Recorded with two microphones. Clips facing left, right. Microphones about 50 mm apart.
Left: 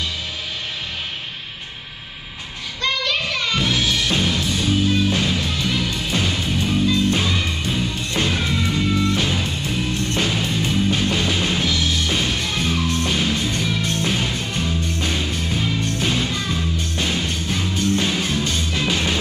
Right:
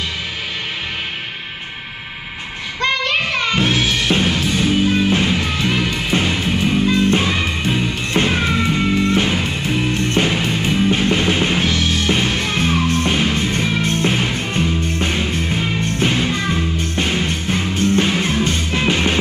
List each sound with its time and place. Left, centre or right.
2.8 s music: right